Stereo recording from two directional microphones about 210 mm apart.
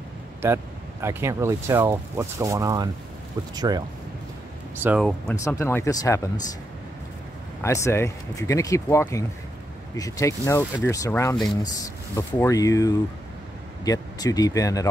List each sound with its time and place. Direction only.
0.4 s speech: 10° right (ahead or behind)
4.8 s speech: 5° right (ahead or behind)
5.3 s speech: 15° left (ahead or behind)
7.6 s speech: 15° left (ahead or behind)